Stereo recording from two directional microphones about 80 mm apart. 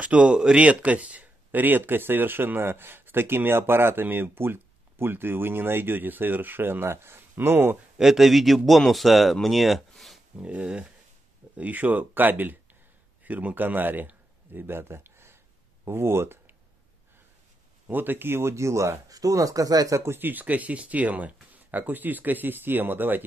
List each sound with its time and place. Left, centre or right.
0.0 s speech: centre
8.0 s a man's voice: centre
10.4 s speech: centre; by 16.5 s right
17.8 s speech: right
20.1 s speech: right